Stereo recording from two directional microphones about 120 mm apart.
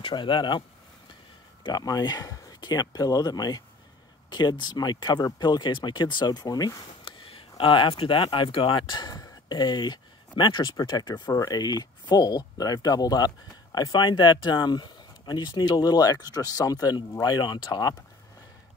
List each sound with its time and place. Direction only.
0.0 s speech: 45° left (ahead or behind)
7.1 s speech: 50° left (ahead or behind)